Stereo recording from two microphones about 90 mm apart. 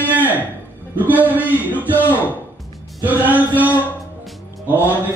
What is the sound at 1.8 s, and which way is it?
Speech, 20° left (ahead or behind).